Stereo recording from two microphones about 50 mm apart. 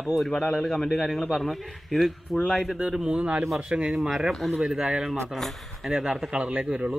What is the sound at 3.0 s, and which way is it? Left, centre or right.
Speech, centre.